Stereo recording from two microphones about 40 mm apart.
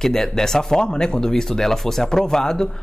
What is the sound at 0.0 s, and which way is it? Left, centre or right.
Speech, centre.